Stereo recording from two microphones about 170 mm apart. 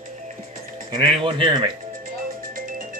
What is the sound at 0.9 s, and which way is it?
Speech, 30° right (ahead or behind).